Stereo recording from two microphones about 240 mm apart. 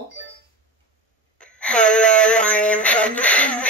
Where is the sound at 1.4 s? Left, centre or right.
Centre.